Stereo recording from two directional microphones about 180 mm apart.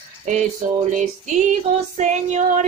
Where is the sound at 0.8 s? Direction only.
40° right (ahead or behind).